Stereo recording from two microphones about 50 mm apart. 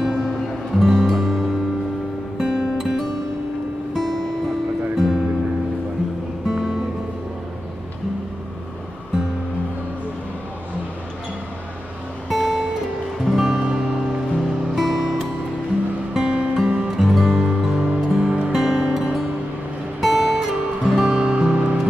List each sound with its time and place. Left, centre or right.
0.0 s music: centre
2.3 s guitar: centre
3.9 s music: centre
6.4 s music: centre
12.3 s guitar: centre
13.2 s music: centre
13.6 s music: centre
16.1 s music: centre
17.0 s music: centre
21.2 s music: right